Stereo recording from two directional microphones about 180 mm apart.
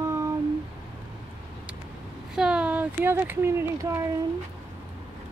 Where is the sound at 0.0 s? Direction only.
15° right (ahead or behind).